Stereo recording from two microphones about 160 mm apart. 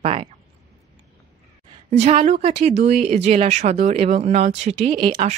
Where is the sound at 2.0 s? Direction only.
40° right (ahead or behind).